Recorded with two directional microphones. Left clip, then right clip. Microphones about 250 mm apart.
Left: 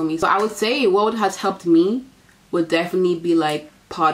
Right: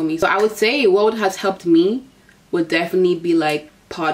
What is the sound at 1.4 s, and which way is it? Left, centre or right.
Speech, centre.